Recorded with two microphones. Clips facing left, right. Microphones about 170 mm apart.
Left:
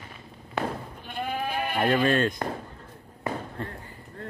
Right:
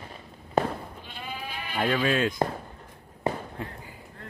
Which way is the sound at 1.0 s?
55° left (ahead or behind).